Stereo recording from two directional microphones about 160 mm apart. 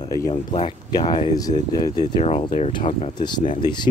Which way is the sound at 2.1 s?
35° left (ahead or behind).